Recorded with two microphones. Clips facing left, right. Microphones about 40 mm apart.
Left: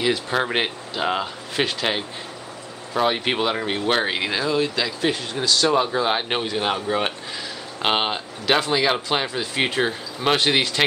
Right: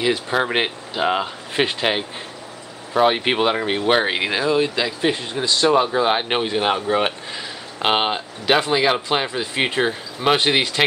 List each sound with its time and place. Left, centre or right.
0.0 s speech: centre